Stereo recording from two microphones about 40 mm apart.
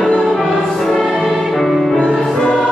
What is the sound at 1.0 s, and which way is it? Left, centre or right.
Music, centre.